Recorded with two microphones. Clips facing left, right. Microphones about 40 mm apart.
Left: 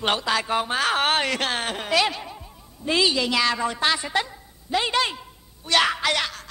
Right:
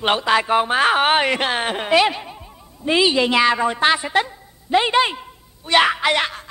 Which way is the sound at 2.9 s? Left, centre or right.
Right.